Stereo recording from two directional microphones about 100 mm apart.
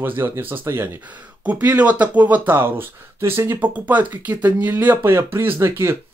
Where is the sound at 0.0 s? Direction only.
20° right (ahead or behind).